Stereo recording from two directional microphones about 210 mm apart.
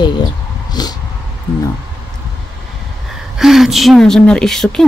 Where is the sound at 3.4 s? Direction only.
Centre (ahead or behind).